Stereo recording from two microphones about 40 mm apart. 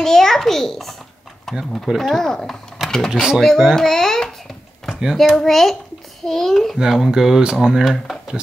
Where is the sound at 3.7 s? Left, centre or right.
Centre.